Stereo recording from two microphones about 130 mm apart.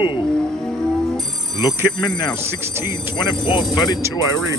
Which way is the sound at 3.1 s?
35° left (ahead or behind).